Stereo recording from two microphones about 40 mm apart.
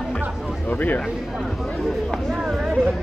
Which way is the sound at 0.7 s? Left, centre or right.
Left.